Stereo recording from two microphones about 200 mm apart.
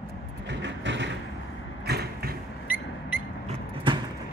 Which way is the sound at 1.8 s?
55° right (ahead or behind).